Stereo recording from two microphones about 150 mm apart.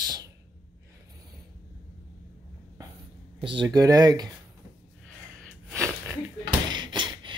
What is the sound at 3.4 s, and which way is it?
Speech, 30° right (ahead or behind).